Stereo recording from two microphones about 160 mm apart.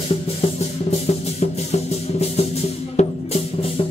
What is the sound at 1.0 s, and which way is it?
Music, 40° left (ahead or behind).